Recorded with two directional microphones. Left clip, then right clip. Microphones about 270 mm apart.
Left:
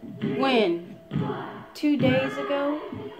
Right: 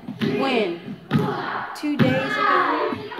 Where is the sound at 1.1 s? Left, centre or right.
Right.